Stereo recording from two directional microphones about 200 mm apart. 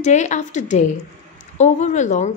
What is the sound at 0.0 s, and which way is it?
A woman's voice, 35° left (ahead or behind).